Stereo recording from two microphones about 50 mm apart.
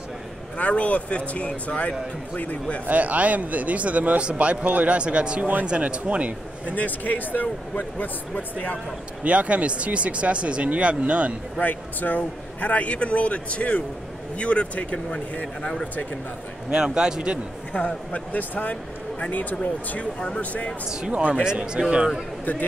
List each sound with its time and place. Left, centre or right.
0.6 s a man's voice: left
2.9 s speech: right
6.7 s speech: left
9.2 s speech: right
11.6 s a man's voice: left
16.7 s speech: centre
17.7 s a man's voice: left
21.1 s speech: right
21.5 s speech: centre
22.4 s speech: left